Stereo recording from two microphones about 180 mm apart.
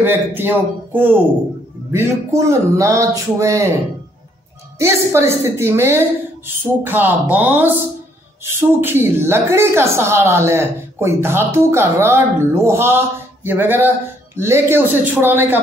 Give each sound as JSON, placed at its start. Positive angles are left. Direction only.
{"t": 0.0, "sound": "a woman's voice", "side_deg": -10}
{"t": 4.7, "sound": "a woman's voice", "side_deg": -15}